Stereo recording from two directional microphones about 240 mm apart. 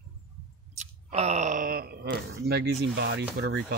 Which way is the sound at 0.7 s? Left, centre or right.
Right.